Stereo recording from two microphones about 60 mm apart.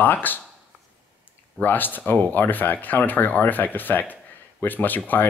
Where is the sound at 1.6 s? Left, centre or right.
Left.